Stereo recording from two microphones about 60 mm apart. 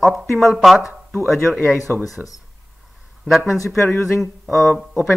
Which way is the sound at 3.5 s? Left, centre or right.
Left.